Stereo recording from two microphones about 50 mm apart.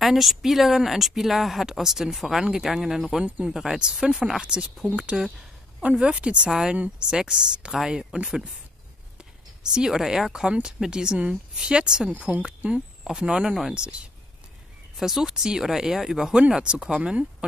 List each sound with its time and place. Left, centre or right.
0.0 s speech: centre
5.1 s speech: centre
5.8 s speech: right
9.6 s speech: centre
13.0 s speech: centre
13.7 s speech: right
15.0 s speech: centre
16.3 s speech: centre